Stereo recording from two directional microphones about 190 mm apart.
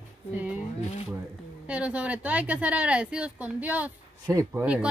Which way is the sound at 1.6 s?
5° right (ahead or behind).